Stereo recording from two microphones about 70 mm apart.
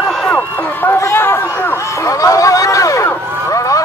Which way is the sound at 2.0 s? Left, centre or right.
Left.